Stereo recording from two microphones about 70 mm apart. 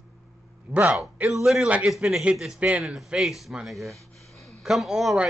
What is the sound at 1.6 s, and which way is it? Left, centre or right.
Speech, right.